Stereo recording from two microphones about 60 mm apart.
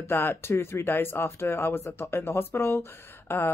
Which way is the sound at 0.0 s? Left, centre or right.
Left.